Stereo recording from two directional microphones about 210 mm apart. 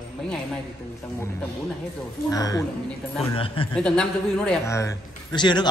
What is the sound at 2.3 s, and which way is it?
Speech, 15° left (ahead or behind).